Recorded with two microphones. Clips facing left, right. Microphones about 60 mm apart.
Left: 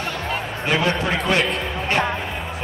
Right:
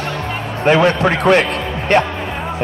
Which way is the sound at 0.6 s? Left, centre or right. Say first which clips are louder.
Right 9 dB; right.